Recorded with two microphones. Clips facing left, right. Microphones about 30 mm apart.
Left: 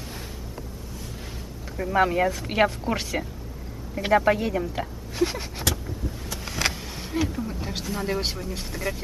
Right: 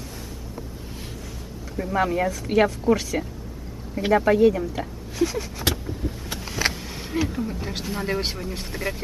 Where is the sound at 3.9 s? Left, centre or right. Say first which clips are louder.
Right 1 dB; centre.